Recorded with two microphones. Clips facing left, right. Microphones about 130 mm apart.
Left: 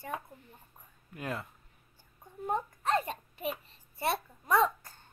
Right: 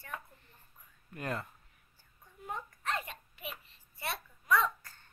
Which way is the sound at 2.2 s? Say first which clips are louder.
Left 9 dB; 40° left (ahead or behind).